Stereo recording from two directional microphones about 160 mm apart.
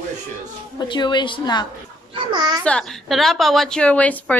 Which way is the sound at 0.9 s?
30° left (ahead or behind).